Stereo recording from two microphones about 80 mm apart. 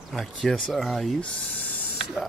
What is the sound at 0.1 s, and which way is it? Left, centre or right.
Speech, centre.